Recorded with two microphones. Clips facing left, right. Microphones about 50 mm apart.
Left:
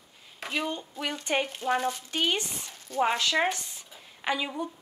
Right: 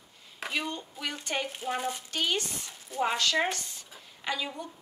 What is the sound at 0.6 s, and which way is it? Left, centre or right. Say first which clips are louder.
Speech: left 3 dB; centre.